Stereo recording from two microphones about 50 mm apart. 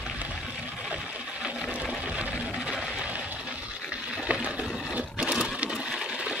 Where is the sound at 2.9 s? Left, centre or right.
Right.